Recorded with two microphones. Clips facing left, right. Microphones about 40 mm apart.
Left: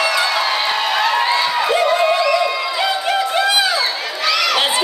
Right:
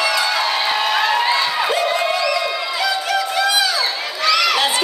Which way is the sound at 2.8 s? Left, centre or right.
Left.